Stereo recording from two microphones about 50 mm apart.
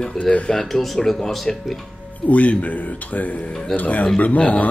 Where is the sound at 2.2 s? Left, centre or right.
Left.